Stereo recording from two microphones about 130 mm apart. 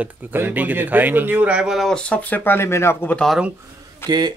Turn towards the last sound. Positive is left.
turn(degrees=20)  # may be behind; listen again after turning